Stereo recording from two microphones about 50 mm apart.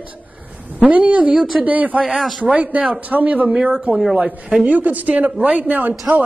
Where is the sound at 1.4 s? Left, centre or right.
Centre.